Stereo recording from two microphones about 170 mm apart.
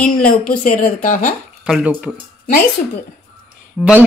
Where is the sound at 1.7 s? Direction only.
5° right (ahead or behind).